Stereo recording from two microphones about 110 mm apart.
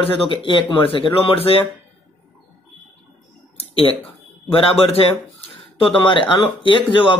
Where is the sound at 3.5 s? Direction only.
60° left (ahead or behind).